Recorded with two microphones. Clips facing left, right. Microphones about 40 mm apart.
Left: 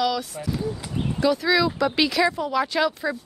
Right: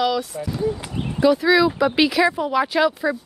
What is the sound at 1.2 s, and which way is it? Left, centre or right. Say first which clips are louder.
Speech: right 5 dB; centre.